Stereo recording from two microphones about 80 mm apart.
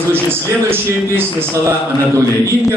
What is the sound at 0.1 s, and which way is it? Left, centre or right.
A man's voice, right.